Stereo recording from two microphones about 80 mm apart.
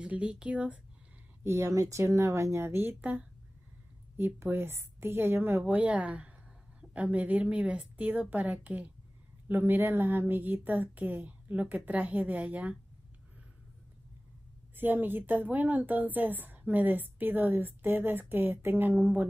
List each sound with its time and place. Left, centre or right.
0.0 s speech: centre
1.4 s a woman's voice: right; by 12.7 s centre
14.8 s a woman's voice: right